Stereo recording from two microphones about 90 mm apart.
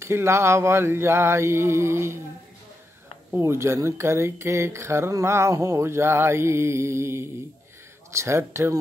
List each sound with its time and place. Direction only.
0.0 s mantra: 30° right (ahead or behind)
3.3 s speech: 25° right (ahead or behind)